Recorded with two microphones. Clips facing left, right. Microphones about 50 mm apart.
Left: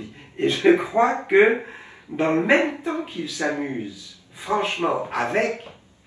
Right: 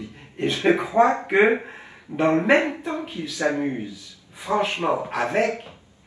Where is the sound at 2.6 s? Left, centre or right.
Left.